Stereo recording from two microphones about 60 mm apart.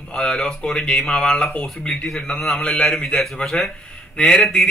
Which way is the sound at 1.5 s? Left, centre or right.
Left.